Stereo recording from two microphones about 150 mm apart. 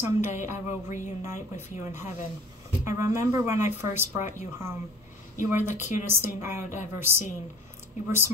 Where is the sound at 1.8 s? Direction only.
15° right (ahead or behind).